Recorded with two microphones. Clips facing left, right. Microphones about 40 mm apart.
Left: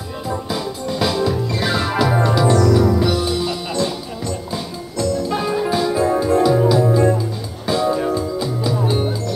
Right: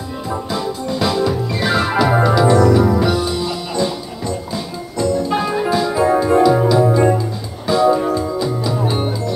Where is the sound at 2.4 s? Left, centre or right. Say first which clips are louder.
Right 2 dB; centre.